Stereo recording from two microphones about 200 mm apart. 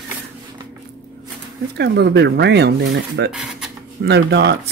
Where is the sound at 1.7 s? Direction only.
55° right (ahead or behind).